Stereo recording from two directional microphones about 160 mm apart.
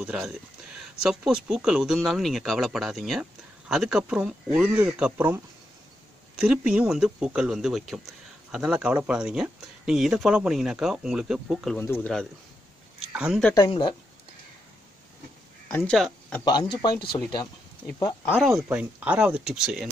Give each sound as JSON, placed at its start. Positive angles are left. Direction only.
{"t": 0.0, "sound": "speech", "side_deg": -5}
{"t": 6.4, "sound": "speech", "side_deg": -5}
{"t": 11.8, "sound": "speech", "side_deg": 15}
{"t": 13.1, "sound": "speech", "side_deg": -5}
{"t": 13.7, "sound": "speech", "side_deg": 30}
{"t": 15.7, "sound": "speech", "side_deg": 5}
{"t": 16.4, "sound": "speech", "side_deg": 30}
{"t": 18.2, "sound": "speech", "side_deg": 5}